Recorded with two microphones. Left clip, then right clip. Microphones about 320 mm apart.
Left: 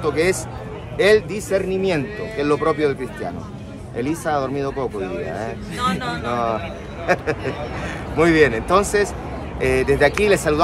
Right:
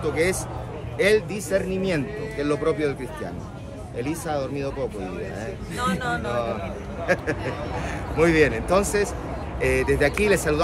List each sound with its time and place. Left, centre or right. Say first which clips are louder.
0.0 s speech: left 4 dB; centre
4.0 s speech: left 6 dB; left
5.8 s speech: left 3 dB; centre
7.1 s speech: left 4 dB; centre